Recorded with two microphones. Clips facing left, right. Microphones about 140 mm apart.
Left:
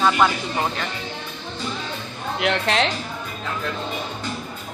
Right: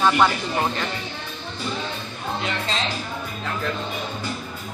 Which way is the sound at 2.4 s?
75° left (ahead or behind).